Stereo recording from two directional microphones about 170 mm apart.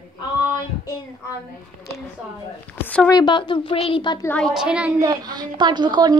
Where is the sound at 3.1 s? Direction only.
25° left (ahead or behind).